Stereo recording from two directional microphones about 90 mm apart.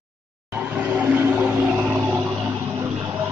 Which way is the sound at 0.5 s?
15° right (ahead or behind).